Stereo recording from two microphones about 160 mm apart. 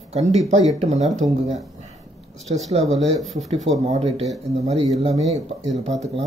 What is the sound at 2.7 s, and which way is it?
Speech, 40° right (ahead or behind).